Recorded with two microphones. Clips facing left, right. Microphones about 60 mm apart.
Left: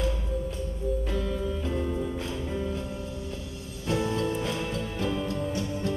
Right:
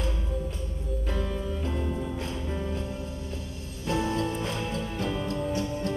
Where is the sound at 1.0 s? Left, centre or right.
Right.